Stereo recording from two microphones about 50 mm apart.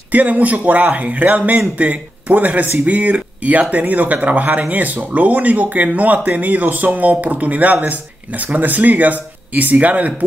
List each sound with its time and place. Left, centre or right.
0.1 s speech: right